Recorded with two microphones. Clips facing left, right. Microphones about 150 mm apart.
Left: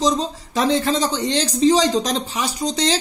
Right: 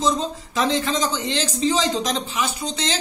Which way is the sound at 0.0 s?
35° left (ahead or behind).